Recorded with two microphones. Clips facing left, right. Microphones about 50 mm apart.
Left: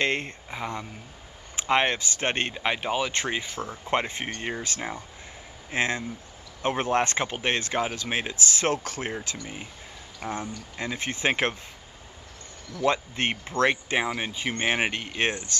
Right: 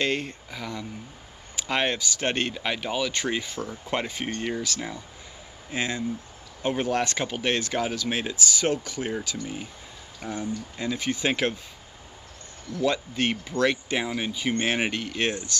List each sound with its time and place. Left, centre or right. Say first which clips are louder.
0.0 s speech: even; left
8.3 s speech: even; left
12.8 s speech: even; left